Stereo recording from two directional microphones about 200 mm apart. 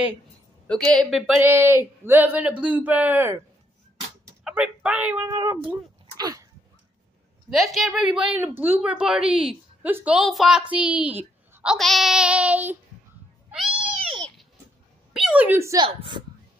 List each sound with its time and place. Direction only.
0.7 s a woman's voice: 5° left (ahead or behind)
1.4 s speech: 10° right (ahead or behind)
4.5 s a woman's voice: 5° right (ahead or behind)
5.3 s speech: 20° right (ahead or behind)
6.1 s dog: 20° right (ahead or behind)
7.4 s a woman's voice: centre (ahead or behind)
13.5 s cat: centre (ahead or behind)
15.1 s speech: 5° right (ahead or behind); by 16.3 s 25° right (ahead or behind)